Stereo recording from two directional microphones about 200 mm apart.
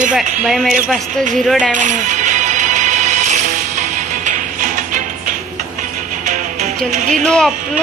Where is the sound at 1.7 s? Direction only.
40° right (ahead or behind).